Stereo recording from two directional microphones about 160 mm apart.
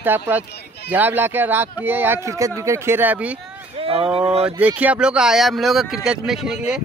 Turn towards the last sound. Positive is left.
turn(degrees=-5)  # may be behind; listen again after turning